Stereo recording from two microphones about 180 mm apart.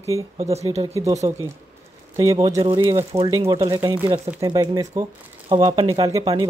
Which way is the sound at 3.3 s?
15° right (ahead or behind).